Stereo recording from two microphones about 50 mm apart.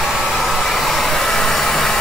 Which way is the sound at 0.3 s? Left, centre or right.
Centre.